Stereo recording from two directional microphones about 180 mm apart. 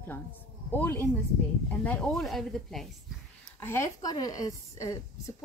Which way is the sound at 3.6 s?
15° left (ahead or behind).